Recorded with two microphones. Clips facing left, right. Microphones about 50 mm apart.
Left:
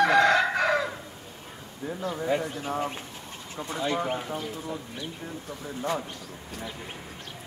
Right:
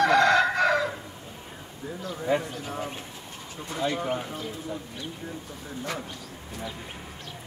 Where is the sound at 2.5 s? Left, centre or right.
Left.